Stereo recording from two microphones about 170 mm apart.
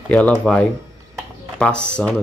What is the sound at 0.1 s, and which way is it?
Speech, 5° left (ahead or behind).